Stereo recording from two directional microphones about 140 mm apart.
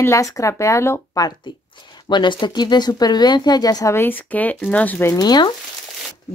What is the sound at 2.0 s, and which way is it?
Speech, 35° left (ahead or behind).